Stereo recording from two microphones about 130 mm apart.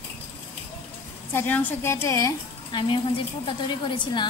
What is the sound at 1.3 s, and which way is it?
A woman's voice, 15° left (ahead or behind).